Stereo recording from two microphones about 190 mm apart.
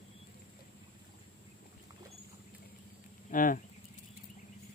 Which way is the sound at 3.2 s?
45° left (ahead or behind).